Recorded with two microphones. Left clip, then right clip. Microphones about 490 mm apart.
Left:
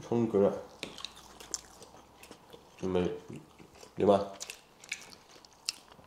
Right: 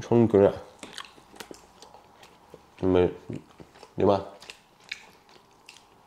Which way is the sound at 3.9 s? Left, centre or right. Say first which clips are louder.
Right 3 dB; right.